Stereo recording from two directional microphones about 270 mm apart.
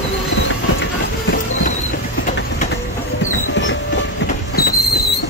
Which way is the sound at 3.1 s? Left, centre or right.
Left.